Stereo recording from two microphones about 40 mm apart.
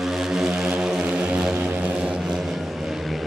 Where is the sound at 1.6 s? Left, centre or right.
Right.